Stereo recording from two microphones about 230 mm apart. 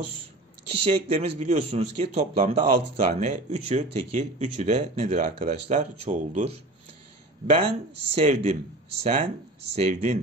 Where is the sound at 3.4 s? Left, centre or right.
Right.